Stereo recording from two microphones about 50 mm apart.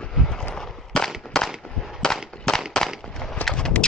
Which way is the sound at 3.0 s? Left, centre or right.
Centre.